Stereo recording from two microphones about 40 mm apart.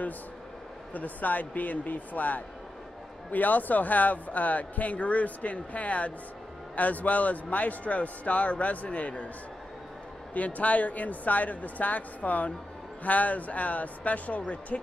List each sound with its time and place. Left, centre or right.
0.9 s speech: left
10.3 s speech: left